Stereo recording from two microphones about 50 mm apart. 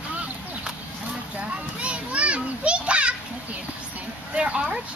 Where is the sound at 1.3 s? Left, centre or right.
Right.